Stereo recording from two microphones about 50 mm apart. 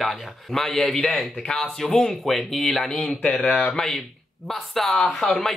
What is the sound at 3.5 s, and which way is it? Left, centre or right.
Speech, left.